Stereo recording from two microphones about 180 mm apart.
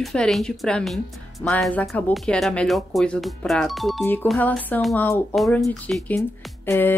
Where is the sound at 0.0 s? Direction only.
Centre (ahead or behind).